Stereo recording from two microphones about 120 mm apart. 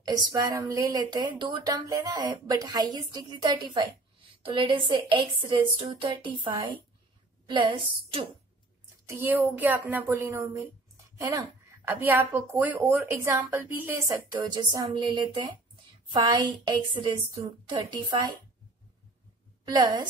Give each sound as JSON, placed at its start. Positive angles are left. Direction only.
{"t": 0.0, "sound": "speech", "side_deg": -35}
{"t": 9.0, "sound": "a woman's voice", "side_deg": -20}
{"t": 11.1, "sound": "a sound", "side_deg": -25}
{"t": 11.9, "sound": "a woman's voice", "side_deg": -15}
{"t": 14.0, "sound": "speech", "side_deg": -35}
{"t": 19.6, "sound": "a woman's voice", "side_deg": -40}